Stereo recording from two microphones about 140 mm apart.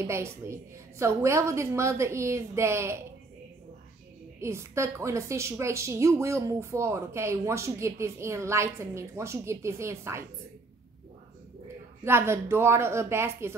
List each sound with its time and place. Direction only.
0.0 s a woman's voice: 20° right (ahead or behind)
4.4 s a woman's voice: 20° right (ahead or behind)
12.0 s speech: 15° right (ahead or behind)